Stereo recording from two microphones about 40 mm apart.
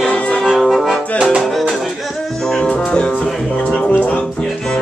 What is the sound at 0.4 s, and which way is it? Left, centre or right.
Music, centre.